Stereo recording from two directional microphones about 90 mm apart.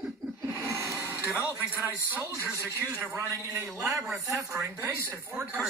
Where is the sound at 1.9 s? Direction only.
30° right (ahead or behind).